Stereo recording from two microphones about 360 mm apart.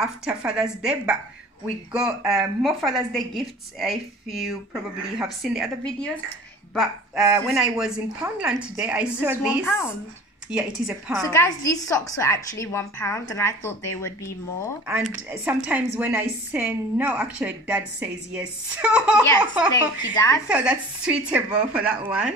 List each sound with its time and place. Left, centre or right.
0.0 s a woman's voice: centre
14.9 s a woman's voice: centre
19.7 s a woman's voice: centre
20.4 s a woman's voice: centre